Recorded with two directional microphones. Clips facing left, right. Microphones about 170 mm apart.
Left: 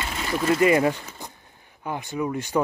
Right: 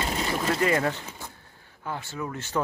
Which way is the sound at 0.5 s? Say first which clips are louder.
Left 7 dB; 10° left (ahead or behind).